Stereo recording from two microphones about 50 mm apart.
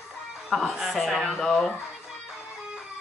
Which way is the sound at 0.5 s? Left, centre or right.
Centre.